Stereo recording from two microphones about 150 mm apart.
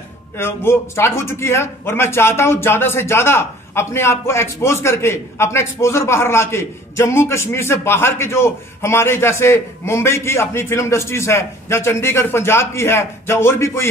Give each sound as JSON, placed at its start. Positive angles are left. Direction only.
{"t": 0.4, "sound": "speech", "side_deg": 15}